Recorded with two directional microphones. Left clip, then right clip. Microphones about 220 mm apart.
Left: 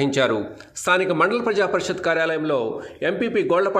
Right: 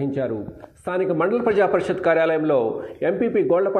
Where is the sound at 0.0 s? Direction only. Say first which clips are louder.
Left 5 dB; 20° left (ahead or behind).